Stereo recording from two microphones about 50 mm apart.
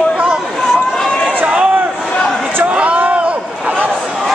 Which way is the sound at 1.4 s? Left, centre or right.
Right.